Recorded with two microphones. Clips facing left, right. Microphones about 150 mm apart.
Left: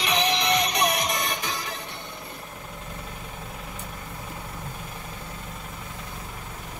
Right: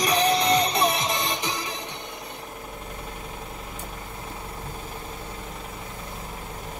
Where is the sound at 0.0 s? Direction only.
35° right (ahead or behind); by 1.8 s 15° right (ahead or behind).